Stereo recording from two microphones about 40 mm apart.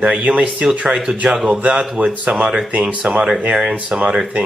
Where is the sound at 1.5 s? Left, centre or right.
Right.